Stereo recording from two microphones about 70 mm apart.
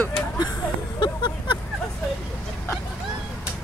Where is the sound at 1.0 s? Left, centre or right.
Left.